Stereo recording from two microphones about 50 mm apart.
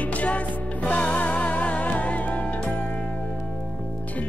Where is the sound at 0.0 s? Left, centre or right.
Left.